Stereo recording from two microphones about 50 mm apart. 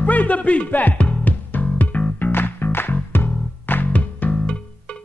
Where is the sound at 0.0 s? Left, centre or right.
Left.